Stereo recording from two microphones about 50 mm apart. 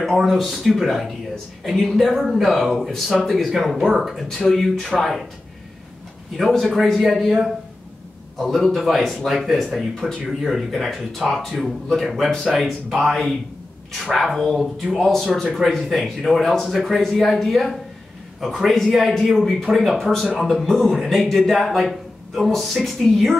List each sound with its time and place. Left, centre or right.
0.2 s speech: centre
6.3 s speech: centre